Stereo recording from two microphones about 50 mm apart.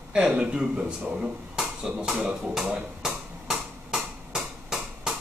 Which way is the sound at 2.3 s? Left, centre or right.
Centre.